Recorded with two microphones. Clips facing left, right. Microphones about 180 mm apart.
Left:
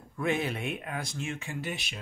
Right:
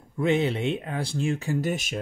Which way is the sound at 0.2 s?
25° right (ahead or behind).